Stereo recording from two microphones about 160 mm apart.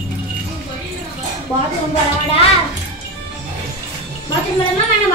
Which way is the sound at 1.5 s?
20° right (ahead or behind).